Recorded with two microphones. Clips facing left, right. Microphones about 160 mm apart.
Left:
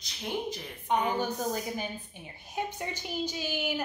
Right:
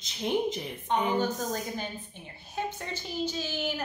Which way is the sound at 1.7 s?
10° left (ahead or behind).